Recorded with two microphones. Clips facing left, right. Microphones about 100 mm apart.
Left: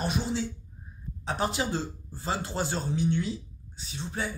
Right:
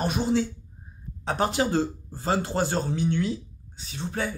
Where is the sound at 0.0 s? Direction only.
50° right (ahead or behind).